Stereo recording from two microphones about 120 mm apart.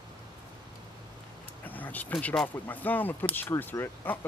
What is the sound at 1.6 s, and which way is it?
Speech, 15° left (ahead or behind).